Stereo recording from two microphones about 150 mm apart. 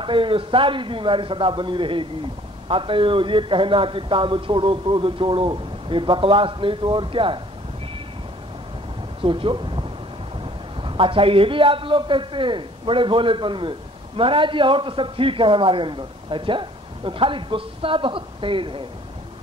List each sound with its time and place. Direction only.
0.0 s a man's voice: 35° right (ahead or behind)
9.2 s a man's voice: 35° right (ahead or behind)